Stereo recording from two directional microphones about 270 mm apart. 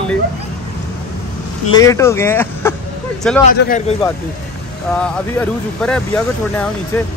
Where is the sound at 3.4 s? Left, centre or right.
Left.